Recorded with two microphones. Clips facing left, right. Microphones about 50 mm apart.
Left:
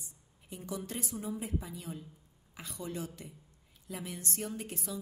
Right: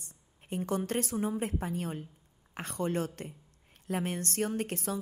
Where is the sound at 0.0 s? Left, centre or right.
Right.